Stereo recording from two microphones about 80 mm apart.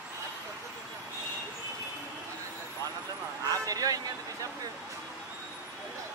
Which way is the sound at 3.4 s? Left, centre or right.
Right.